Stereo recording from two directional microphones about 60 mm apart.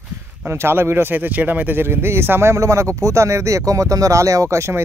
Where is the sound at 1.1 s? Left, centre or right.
Right.